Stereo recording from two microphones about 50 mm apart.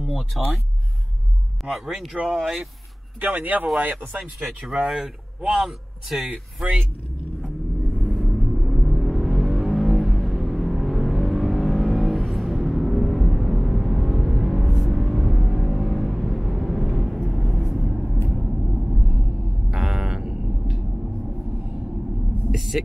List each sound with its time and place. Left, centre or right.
0.0 s speech: centre
1.7 s speech: centre
3.2 s speech: right
4.1 s speech: centre
4.8 s a man's voice: centre
6.2 s speech: centre
7.4 s vehicle: centre
12.6 s music: centre
18.3 s vehicle: centre
19.7 s a sound: centre
22.5 s a sound: centre